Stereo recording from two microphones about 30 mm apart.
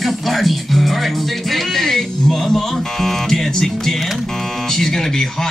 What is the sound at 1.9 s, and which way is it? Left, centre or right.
Speech, centre.